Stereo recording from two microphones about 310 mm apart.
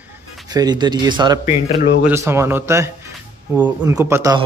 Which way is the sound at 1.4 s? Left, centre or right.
Left.